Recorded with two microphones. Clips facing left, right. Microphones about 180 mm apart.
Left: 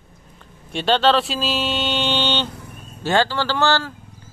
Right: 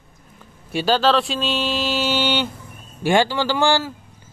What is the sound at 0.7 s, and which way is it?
Speech, centre (ahead or behind).